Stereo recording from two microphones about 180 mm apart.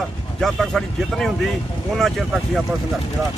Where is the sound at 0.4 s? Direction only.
Centre (ahead or behind).